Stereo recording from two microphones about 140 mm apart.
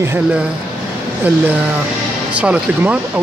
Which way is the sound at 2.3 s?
10° right (ahead or behind).